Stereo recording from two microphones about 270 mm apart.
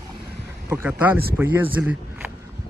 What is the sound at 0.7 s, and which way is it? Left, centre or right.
Speech, centre.